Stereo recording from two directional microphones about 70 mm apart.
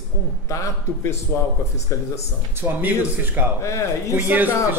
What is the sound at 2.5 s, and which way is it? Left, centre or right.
Speech, right.